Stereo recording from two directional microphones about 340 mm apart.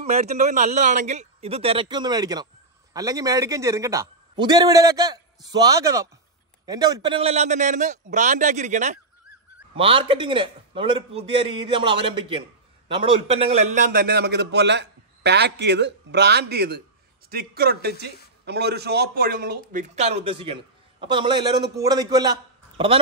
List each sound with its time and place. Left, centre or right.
0.0 s a man's voice: centre